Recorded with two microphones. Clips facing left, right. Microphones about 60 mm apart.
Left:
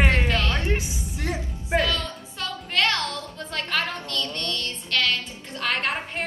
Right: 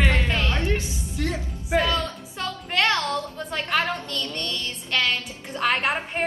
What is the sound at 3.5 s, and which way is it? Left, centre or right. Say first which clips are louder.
A woman's voice: right 3 dB; right.